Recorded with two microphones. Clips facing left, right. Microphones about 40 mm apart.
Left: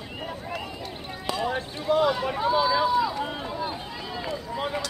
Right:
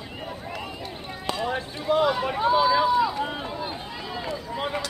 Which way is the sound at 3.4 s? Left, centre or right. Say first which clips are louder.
Left 1 dB; right.